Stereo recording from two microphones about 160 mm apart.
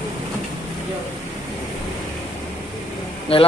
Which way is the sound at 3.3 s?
35° left (ahead or behind).